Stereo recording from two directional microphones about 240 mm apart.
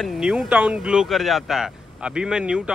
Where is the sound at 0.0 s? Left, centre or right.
Centre.